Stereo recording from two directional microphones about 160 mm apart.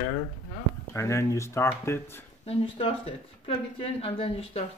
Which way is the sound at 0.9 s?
20° left (ahead or behind).